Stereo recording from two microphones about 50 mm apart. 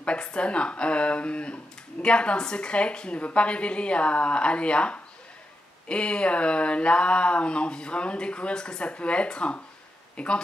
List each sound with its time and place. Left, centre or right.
0.0 s speech: left